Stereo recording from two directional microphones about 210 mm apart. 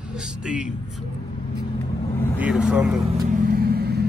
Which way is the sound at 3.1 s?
40° right (ahead or behind).